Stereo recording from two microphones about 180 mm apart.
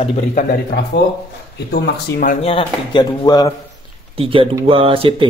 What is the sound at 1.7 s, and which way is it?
Speech, 65° left (ahead or behind).